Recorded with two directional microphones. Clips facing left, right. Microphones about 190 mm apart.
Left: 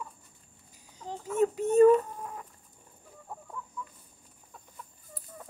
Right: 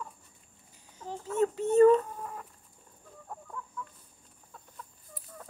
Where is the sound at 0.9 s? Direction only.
15° left (ahead or behind).